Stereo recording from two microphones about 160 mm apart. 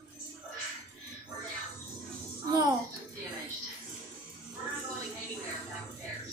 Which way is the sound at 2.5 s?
25° right (ahead or behind).